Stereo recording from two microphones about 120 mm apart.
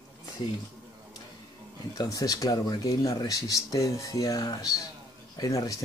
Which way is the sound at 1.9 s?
30° left (ahead or behind).